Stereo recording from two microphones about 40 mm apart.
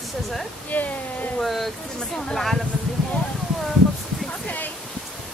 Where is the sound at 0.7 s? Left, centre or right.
Left.